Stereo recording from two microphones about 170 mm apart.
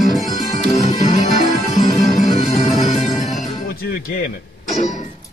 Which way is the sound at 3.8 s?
65° left (ahead or behind).